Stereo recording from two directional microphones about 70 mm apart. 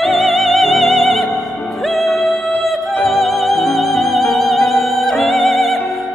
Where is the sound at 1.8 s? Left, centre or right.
Centre.